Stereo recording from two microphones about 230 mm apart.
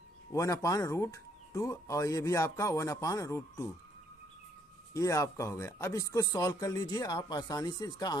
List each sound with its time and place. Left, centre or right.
0.3 s speech: centre
4.9 s speech: centre